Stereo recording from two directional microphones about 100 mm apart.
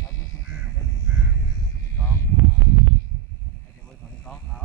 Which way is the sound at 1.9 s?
25° left (ahead or behind).